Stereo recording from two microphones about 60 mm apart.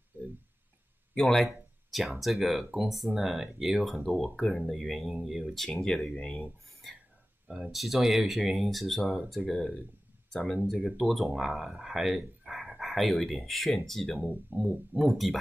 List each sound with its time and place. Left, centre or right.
0.1 s a sound: right
1.1 s speech: centre
4.2 s speech: centre
5.5 s speech: centre
7.4 s speech: centre
7.7 s speech: centre
14.6 s speech: centre
15.0 s speech: centre